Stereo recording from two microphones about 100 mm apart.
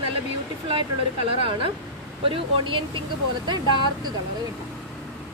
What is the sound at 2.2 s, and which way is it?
Speech, 60° right (ahead or behind).